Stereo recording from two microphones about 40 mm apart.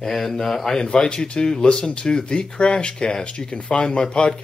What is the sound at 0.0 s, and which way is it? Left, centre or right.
Speech, centre.